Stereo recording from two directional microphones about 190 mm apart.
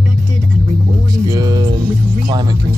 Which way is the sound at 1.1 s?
20° right (ahead or behind).